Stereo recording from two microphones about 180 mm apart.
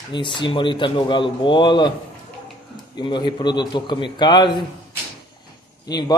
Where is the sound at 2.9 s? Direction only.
25° left (ahead or behind).